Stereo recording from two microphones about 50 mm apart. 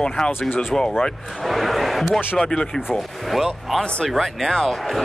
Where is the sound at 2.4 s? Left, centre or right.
Centre.